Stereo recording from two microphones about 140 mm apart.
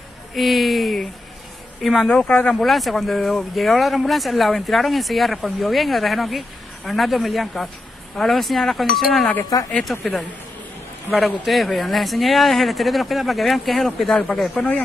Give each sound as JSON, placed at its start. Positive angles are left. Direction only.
{"t": 0.3, "sound": "speech", "side_deg": 0}
{"t": 9.3, "sound": "speech", "side_deg": 25}
{"t": 9.7, "sound": "speech", "side_deg": 5}